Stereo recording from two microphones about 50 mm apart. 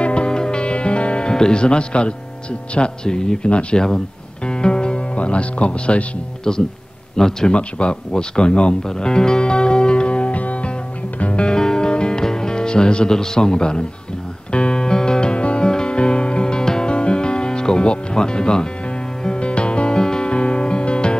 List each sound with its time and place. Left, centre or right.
0.0 s music: left
2.7 s a man's voice: centre
11.1 s music: left